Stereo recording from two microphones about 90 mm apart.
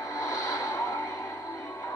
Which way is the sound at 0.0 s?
40° left (ahead or behind).